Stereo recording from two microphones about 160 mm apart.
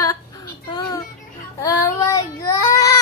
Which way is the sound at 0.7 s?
25° left (ahead or behind).